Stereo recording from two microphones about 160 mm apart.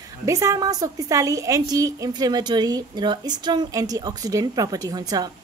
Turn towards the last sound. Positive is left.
turn(degrees=-25)  # may be behind; listen again after turning